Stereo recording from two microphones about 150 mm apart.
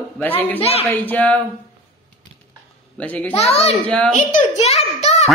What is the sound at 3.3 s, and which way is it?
Speech, 45° left (ahead or behind).